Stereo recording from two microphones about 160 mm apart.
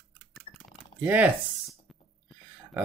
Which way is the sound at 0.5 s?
35° left (ahead or behind).